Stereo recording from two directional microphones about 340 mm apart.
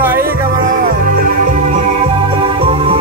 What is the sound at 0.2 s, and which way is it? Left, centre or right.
Music, right.